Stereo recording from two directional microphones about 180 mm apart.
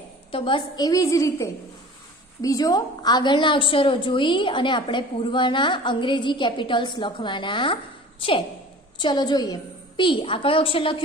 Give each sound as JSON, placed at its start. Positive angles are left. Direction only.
{"t": 0.3, "sound": "a woman's voice", "side_deg": 30}